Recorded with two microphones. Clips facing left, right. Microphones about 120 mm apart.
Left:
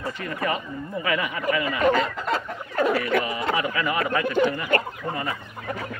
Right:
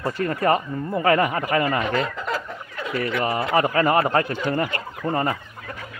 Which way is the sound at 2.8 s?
45° left (ahead or behind).